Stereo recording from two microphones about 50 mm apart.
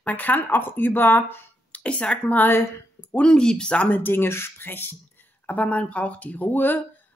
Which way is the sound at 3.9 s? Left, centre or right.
Left.